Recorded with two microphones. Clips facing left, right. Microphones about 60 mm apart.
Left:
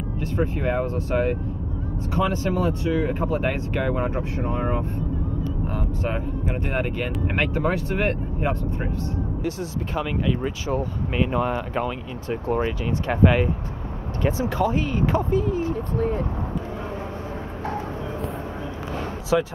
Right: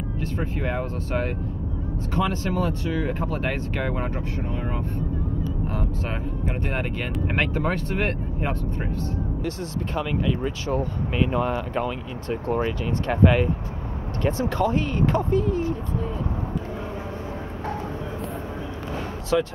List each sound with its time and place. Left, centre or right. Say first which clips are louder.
0.4 s speech: left 5 dB; centre
5.7 s speech: left 2 dB; centre
19.3 s speech: left 1 dB; centre